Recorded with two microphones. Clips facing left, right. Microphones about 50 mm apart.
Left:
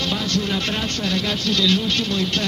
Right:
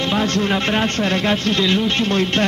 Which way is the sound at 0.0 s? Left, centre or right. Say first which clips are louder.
Right 5 dB; right.